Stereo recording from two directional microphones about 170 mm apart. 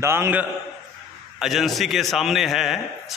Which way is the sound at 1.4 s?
Centre (ahead or behind).